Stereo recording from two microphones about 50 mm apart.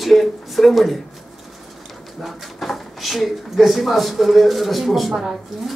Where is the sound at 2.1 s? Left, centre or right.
Centre.